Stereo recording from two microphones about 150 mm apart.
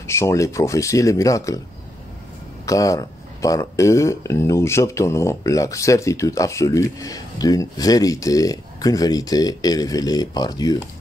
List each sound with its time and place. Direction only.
0.0 s speech: 20° left (ahead or behind)
2.6 s speech: 20° left (ahead or behind)